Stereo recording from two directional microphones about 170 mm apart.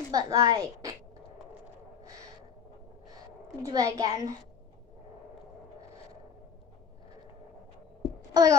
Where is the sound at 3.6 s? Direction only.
20° right (ahead or behind).